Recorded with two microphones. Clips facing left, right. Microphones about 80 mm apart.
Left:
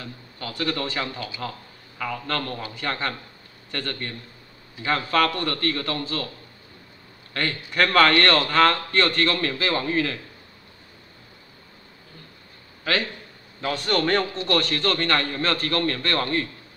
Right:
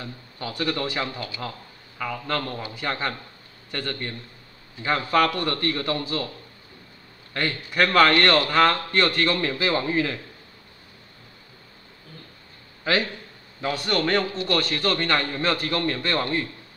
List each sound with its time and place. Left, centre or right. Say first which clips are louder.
0.0 s a man's voice: right 2 dB; centre
2.2 s a man's voice: right 1 dB; centre
7.3 s a man's voice: even; centre
12.8 s a man's voice: right 2 dB; centre
13.6 s a man's voice: left 1 dB; centre